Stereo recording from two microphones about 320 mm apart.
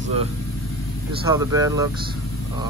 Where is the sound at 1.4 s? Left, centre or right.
Centre.